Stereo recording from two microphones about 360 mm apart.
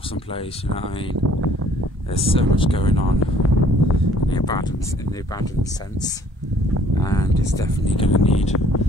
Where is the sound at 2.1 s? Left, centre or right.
Centre.